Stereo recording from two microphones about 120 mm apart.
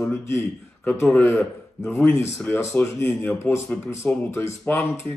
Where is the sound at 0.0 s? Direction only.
20° left (ahead or behind).